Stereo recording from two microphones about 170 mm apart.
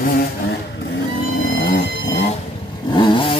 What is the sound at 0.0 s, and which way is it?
Vehicle, 65° left (ahead or behind).